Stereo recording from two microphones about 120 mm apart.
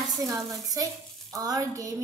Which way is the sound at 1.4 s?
30° right (ahead or behind).